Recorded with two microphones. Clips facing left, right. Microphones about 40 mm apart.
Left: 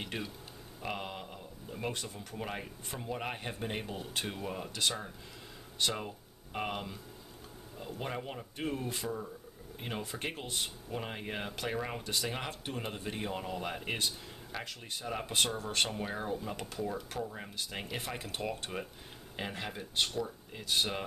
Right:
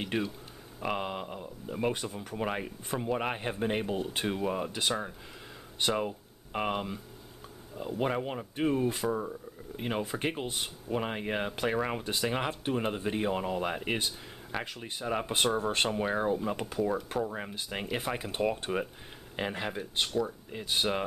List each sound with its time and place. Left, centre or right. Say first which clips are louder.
0.0 s speech: right 7 dB; centre
9.0 s speech: right 7 dB; right
9.8 s speech: right 7 dB; centre